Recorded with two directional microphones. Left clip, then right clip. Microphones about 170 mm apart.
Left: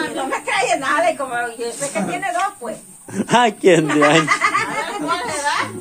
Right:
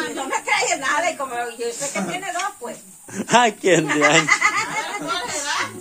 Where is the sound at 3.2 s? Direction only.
5° left (ahead or behind).